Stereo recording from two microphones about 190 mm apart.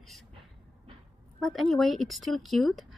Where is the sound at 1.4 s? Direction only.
Centre (ahead or behind).